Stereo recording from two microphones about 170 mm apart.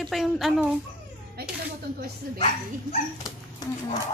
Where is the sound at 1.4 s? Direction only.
65° right (ahead or behind).